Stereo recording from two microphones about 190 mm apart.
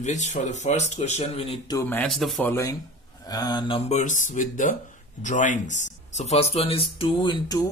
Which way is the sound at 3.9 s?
40° left (ahead or behind).